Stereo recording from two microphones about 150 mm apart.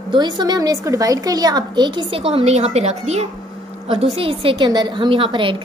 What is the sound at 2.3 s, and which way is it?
Speech, 45° right (ahead or behind).